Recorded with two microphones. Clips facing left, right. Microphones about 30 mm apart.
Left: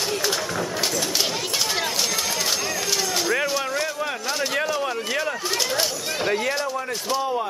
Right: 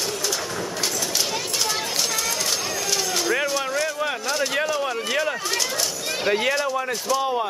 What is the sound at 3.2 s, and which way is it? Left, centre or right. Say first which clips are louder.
Speech: even; centre.